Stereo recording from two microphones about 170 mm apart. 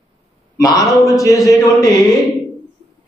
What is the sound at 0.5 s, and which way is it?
A man's voice, 20° left (ahead or behind).